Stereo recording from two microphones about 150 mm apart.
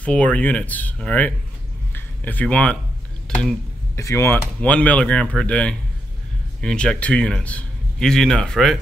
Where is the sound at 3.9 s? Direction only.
20° left (ahead or behind).